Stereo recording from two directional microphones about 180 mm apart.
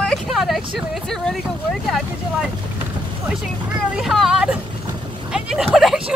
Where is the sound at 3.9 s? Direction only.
Centre (ahead or behind).